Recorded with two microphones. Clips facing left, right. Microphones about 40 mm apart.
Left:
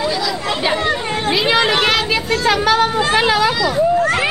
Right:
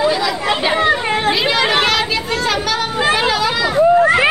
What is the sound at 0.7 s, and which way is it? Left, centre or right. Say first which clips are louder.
Children playing: right 4 dB; right.